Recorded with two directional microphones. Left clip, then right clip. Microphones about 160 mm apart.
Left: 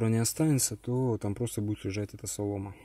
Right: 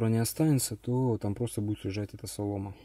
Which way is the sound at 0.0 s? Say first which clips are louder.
Even; centre (ahead or behind).